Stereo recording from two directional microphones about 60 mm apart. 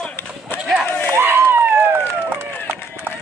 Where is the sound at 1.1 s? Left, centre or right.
Right.